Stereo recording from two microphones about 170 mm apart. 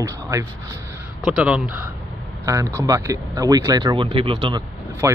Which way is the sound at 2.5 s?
20° right (ahead or behind).